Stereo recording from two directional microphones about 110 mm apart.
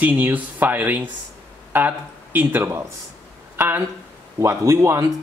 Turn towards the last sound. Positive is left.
turn(degrees=-30)  # may be behind; listen again after turning